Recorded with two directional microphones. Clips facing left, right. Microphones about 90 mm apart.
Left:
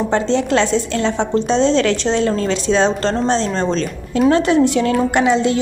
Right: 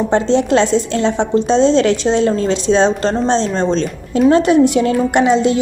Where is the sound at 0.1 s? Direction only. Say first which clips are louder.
Right 4 dB; 20° right (ahead or behind).